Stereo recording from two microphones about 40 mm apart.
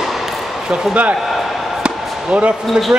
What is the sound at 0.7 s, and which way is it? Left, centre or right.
Speech, right.